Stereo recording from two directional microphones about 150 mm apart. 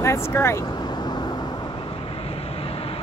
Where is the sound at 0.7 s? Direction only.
30° left (ahead or behind).